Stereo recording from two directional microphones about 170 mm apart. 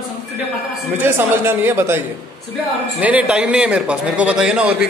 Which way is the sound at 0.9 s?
10° right (ahead or behind).